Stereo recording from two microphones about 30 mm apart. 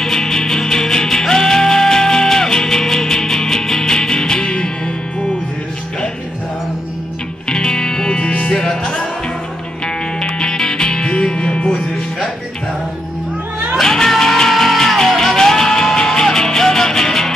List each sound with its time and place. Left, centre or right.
0.0 s music: centre
7.4 s music: left
8.3 s music: left
8.5 s music: left
10.2 s music: left
13.7 s music: centre